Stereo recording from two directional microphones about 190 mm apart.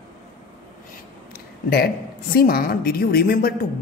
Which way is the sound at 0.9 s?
55° left (ahead or behind).